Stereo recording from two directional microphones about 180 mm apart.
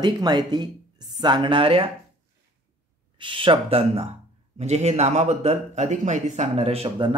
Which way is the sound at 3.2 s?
30° right (ahead or behind).